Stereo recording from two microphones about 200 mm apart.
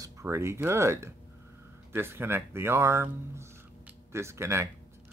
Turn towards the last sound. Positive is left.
turn(degrees=-15)  # may be behind; listen again after turning